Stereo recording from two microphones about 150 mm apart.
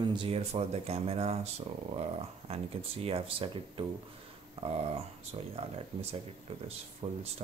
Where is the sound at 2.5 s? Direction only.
40° right (ahead or behind).